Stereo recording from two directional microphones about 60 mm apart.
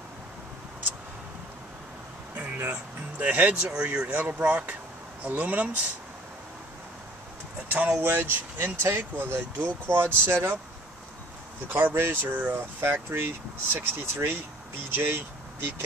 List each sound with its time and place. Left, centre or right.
2.3 s a sound: right
3.2 s speech: right
7.6 s speech: right
11.7 s speech: right